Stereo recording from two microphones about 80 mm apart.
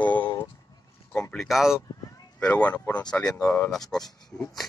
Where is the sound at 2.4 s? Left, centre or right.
Centre.